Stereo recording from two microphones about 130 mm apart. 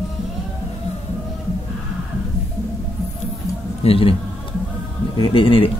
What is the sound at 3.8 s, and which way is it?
A man's voice, 45° left (ahead or behind).